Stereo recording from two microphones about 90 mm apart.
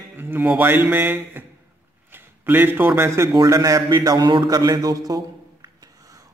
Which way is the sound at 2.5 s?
25° right (ahead or behind).